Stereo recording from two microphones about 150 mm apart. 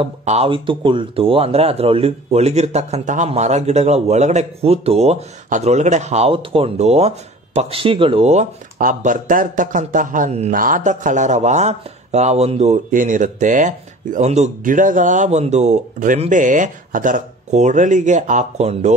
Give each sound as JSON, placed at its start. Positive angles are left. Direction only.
{"t": 0.2, "sound": "speech", "side_deg": -50}
{"t": 0.5, "sound": "speech", "side_deg": -35}